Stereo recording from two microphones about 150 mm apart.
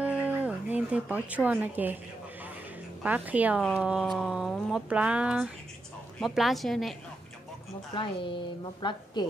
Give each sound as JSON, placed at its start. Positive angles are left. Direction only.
{"t": 0.0, "sound": "a sound", "side_deg": -10}
{"t": 3.0, "sound": "speech", "side_deg": -10}
{"t": 7.9, "sound": "a woman's voice", "side_deg": 35}